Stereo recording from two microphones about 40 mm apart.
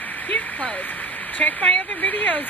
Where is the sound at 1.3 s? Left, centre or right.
Left.